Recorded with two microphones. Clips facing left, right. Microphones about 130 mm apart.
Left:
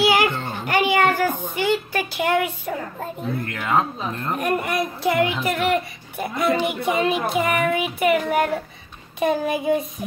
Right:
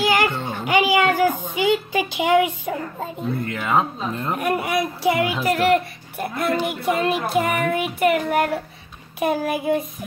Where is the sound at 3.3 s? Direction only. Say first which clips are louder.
Right 1 dB; centre (ahead or behind).